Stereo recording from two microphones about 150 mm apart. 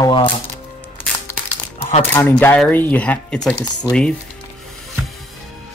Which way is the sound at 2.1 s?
15° left (ahead or behind).